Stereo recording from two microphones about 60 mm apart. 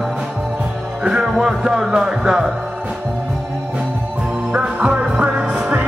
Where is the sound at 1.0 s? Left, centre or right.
Centre.